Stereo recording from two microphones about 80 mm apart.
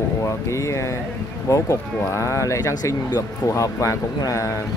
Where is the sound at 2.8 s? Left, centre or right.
Left.